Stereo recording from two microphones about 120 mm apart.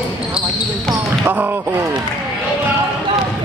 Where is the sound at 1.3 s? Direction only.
15° right (ahead or behind).